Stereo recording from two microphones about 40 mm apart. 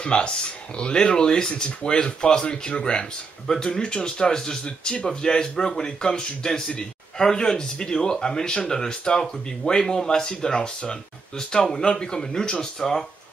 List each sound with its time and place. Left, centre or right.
0.0 s a man's voice: left